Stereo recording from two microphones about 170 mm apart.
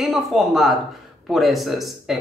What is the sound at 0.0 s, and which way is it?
A man's voice, centre (ahead or behind).